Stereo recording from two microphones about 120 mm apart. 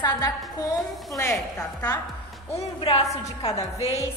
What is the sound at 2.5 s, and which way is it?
Speech, 55° left (ahead or behind).